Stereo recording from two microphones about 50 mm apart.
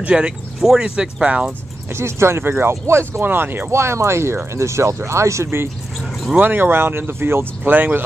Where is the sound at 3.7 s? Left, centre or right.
Right.